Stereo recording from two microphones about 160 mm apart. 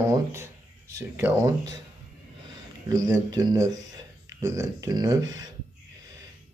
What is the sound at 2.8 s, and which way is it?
Speech, 25° right (ahead or behind).